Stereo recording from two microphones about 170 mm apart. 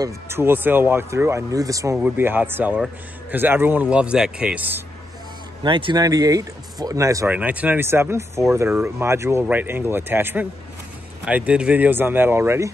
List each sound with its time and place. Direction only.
0.0 s speech: 15° right (ahead or behind)
2.0 s speech: 10° right (ahead or behind)
5.6 s speech: 30° right (ahead or behind)
7.3 s speech: 10° right (ahead or behind)